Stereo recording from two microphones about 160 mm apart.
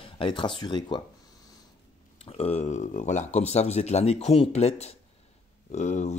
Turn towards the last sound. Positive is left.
turn(degrees=45)  # may be behind; listen again after turning